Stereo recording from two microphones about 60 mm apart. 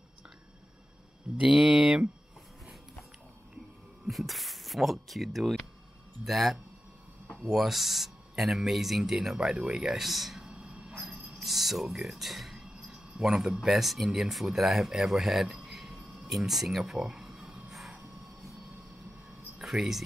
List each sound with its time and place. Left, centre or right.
1.4 s speech: centre
4.1 s speech: centre
10.5 s a sound: centre
11.3 s speech: centre
12.6 s speech: centre
19.6 s speech: centre